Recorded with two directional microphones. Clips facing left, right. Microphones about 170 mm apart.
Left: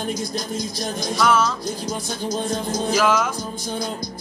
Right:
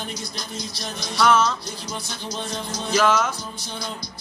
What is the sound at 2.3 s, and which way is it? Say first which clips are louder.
Music: left 6 dB; 45° left (ahead or behind).